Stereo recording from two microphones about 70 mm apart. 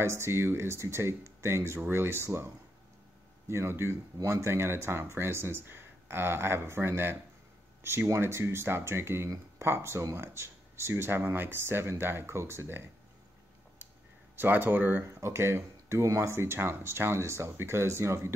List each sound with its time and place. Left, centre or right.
0.0 s speech: right
4.2 s speech: right
14.3 s speech: right
15.0 s speech: right